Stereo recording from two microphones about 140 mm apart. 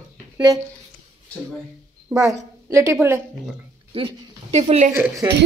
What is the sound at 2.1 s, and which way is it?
A woman's voice, 20° right (ahead or behind).